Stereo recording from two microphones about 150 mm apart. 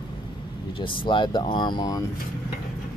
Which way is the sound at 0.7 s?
35° left (ahead or behind).